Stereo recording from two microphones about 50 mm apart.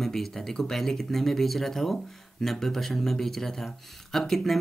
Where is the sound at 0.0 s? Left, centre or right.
Centre.